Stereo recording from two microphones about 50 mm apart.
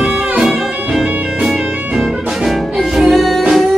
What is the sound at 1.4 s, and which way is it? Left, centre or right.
Music, centre.